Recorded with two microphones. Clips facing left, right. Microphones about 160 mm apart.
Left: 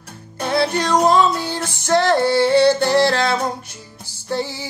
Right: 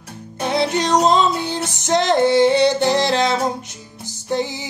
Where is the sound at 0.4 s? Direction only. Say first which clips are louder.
Even; 20° right (ahead or behind).